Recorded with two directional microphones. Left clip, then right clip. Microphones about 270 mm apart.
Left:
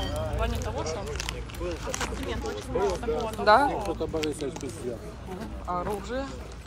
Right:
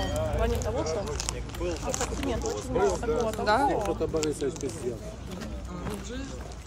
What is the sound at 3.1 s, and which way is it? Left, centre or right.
Speech, centre.